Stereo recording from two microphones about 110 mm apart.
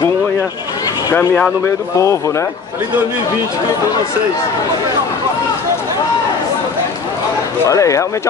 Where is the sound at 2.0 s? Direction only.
25° left (ahead or behind).